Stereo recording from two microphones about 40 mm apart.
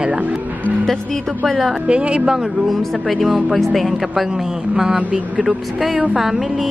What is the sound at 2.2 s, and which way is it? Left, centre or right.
Music, centre.